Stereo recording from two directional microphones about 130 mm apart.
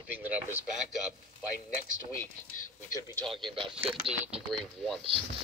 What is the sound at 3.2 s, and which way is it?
Speech, centre (ahead or behind).